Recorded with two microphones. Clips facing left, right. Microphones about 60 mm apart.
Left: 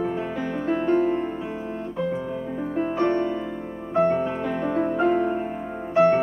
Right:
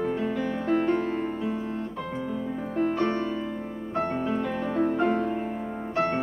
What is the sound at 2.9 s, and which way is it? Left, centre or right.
Music, centre.